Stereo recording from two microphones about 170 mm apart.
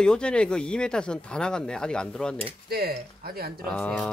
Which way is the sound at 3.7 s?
5° left (ahead or behind).